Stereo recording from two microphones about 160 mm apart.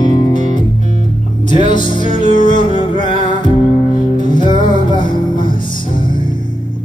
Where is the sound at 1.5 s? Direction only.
30° left (ahead or behind).